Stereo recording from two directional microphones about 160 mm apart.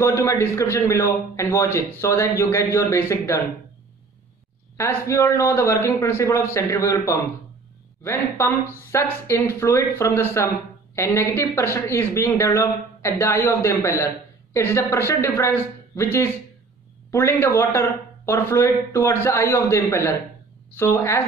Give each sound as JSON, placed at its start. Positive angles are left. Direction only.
{"t": 0.0, "sound": "speech", "side_deg": 20}
{"t": 4.7, "sound": "speech", "side_deg": 20}